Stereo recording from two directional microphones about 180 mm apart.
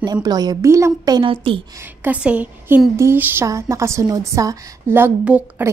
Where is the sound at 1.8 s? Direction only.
10° right (ahead or behind).